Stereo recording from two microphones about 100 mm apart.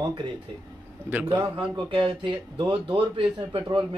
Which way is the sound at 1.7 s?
55° right (ahead or behind).